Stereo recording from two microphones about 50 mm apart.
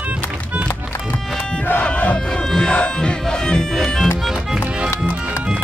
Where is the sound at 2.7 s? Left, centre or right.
Centre.